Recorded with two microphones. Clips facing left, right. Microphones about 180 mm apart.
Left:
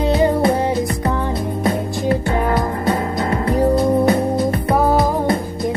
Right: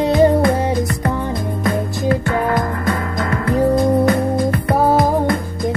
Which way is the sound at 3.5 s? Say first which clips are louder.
Right 1 dB; 25° left (ahead or behind).